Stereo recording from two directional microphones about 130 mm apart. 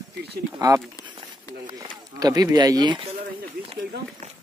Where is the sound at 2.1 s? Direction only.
30° right (ahead or behind).